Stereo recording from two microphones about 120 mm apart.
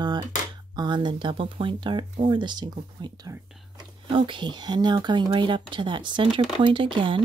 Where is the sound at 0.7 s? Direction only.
40° right (ahead or behind).